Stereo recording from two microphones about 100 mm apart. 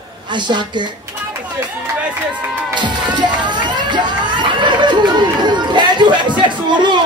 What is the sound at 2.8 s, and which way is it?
Speech, 50° right (ahead or behind).